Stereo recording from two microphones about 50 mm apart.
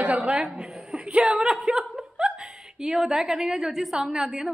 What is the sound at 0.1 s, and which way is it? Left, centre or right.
Chuckle, centre.